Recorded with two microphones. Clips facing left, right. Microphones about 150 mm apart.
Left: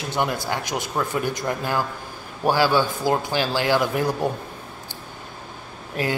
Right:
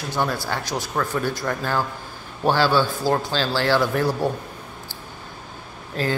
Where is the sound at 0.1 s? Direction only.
20° left (ahead or behind).